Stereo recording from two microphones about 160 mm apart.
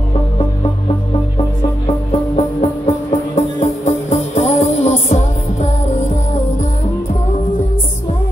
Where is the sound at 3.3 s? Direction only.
45° left (ahead or behind).